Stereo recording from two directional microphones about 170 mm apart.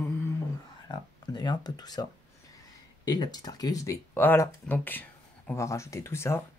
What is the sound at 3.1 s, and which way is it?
Speech, 25° left (ahead or behind).